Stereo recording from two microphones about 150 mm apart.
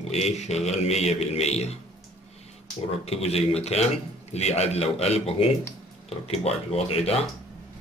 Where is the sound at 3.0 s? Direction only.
45° left (ahead or behind).